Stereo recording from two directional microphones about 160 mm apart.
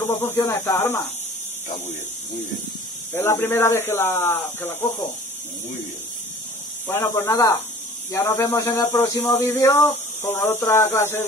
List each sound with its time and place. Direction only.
0.0 s speech: 15° left (ahead or behind)
3.2 s speech: 15° left (ahead or behind)
6.9 s speech: 15° left (ahead or behind)